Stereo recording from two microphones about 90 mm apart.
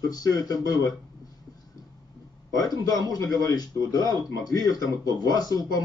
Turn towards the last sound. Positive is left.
turn(degrees=45)  # may be behind; listen again after turning